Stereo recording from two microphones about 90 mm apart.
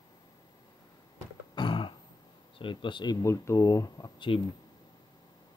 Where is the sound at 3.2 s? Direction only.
35° left (ahead or behind).